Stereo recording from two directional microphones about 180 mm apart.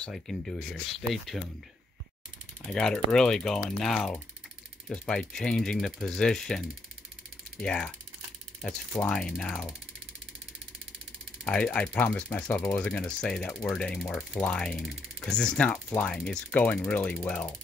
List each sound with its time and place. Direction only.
0.0 s speech: centre (ahead or behind)
2.7 s speech: 5° left (ahead or behind)
8.9 s speech: 5° left (ahead or behind)
11.4 s speech: 5° left (ahead or behind)